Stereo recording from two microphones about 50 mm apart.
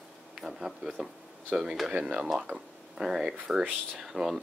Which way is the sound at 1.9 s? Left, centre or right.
Right.